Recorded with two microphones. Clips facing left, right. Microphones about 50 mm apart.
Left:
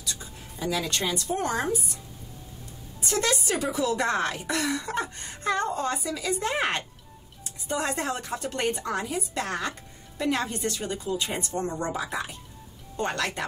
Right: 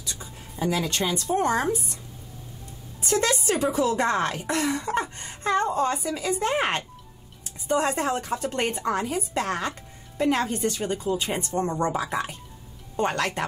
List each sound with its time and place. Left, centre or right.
0.0 s a woman's voice: right
3.1 s a woman's voice: right
12.0 s speech: right